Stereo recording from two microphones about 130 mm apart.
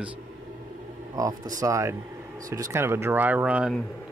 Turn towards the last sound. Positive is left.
turn(degrees=-5)  # may be behind; listen again after turning